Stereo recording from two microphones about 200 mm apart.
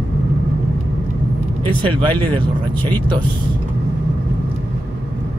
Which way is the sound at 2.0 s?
25° right (ahead or behind).